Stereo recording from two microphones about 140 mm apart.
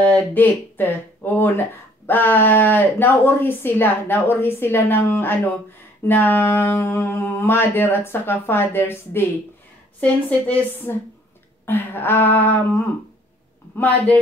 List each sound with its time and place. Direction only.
0.1 s a woman's voice: 15° left (ahead or behind)